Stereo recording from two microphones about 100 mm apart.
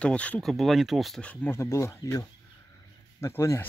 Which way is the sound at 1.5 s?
30° left (ahead or behind).